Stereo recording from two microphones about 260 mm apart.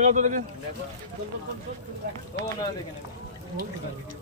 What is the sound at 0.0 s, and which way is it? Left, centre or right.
Speech, right.